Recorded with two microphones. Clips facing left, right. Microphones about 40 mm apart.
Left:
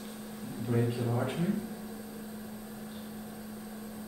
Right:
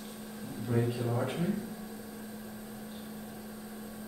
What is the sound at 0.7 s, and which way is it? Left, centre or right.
Speech, centre.